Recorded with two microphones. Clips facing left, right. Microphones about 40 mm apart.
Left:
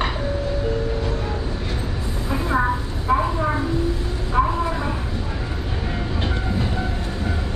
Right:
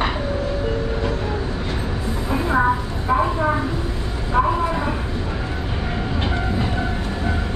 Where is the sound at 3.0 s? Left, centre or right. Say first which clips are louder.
Right 1 dB; centre.